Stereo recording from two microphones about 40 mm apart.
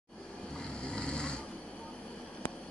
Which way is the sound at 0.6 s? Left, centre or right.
Left.